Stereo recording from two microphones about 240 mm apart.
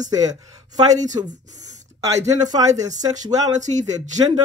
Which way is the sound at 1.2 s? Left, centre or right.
Right.